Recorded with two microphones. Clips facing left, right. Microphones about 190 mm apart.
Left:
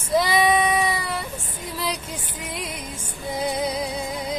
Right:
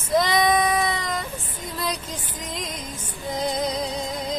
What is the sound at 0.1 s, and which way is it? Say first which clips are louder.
Child singing: even; 10° left (ahead or behind).